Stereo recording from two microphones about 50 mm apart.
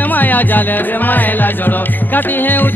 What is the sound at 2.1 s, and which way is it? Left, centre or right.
Speech, left.